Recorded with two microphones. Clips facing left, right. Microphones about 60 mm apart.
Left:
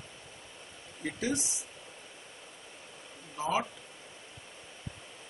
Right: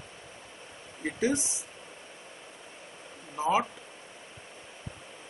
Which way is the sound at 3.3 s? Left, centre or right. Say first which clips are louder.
Right 5 dB; right.